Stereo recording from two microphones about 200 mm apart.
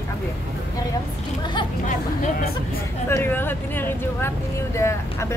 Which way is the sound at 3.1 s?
10° left (ahead or behind).